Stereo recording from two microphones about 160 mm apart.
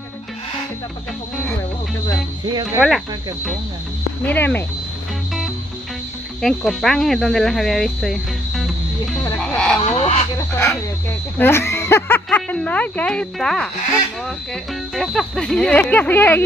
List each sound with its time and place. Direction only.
2.4 s speech: 25° right (ahead or behind)
4.3 s speech: 10° left (ahead or behind)
6.4 s speech: centre (ahead or behind)
9.2 s music: 10° left (ahead or behind)
9.8 s a sound: 35° left (ahead or behind)
11.3 s speech: 15° left (ahead or behind)